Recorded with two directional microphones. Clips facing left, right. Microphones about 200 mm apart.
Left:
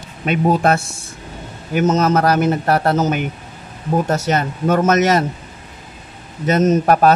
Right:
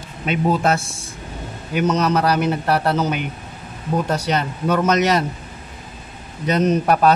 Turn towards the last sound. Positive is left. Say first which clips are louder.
# left 3 dB
turn(degrees=50)  # may be behind; listen again after turning